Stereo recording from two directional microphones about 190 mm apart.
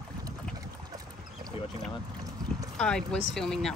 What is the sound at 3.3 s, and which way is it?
Speech, centre (ahead or behind).